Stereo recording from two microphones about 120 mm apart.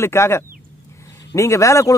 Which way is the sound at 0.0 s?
20° left (ahead or behind).